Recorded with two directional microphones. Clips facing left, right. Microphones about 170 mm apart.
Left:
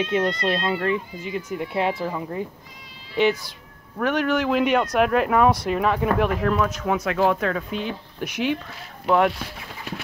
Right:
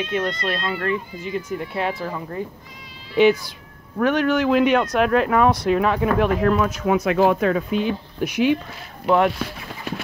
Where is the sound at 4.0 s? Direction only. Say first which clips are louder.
Right 3 dB; centre (ahead or behind).